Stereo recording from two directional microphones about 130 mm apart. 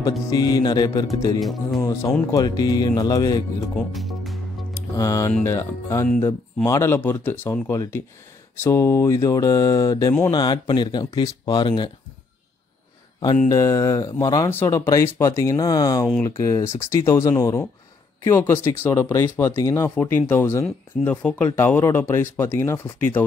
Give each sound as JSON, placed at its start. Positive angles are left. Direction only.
{"t": 0.3, "sound": "speech", "side_deg": 30}
{"t": 1.4, "sound": "music", "side_deg": 0}
{"t": 1.8, "sound": "speech", "side_deg": 25}
{"t": 3.7, "sound": "speech", "side_deg": 0}
{"t": 4.9, "sound": "speech", "side_deg": 25}
{"t": 13.5, "sound": "speech", "side_deg": 25}